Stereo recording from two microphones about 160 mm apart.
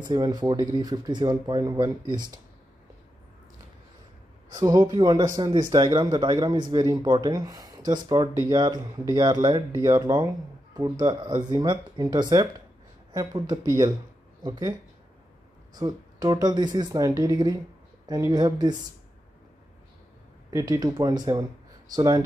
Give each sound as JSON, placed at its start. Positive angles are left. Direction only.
{"t": 0.0, "sound": "speech", "side_deg": -25}
{"t": 4.5, "sound": "speech", "side_deg": -25}
{"t": 20.5, "sound": "speech", "side_deg": -20}